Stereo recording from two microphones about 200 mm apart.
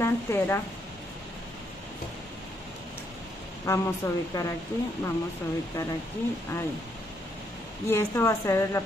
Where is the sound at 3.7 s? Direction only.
15° left (ahead or behind).